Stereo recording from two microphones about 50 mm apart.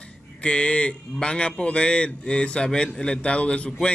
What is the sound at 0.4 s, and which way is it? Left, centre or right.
Speech, centre.